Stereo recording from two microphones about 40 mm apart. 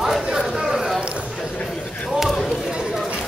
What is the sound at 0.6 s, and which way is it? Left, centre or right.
Clip-clop, centre.